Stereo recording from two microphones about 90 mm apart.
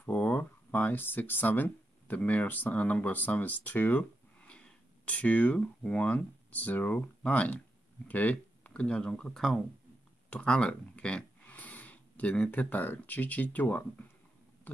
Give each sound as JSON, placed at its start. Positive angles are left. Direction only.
{"t": 0.0, "sound": "speech", "side_deg": 15}